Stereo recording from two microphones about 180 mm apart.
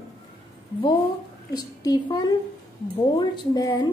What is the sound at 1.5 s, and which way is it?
A woman's voice, 20° left (ahead or behind).